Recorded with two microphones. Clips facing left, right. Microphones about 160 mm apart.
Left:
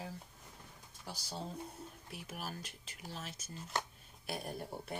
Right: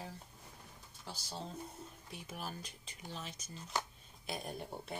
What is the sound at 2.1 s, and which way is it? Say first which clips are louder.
Speech: even; 5° left (ahead or behind).